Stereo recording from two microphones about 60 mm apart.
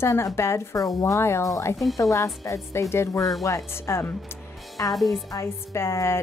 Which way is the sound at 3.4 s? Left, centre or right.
Left.